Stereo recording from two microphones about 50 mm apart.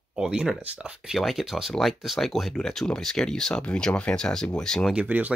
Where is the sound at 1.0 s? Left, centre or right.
Centre.